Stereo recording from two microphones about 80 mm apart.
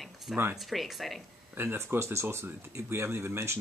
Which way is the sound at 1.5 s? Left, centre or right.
Right.